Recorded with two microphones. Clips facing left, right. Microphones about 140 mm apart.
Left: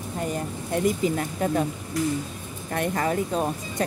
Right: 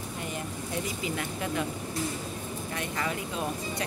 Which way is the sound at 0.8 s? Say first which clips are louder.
Left 9 dB; 40° left (ahead or behind).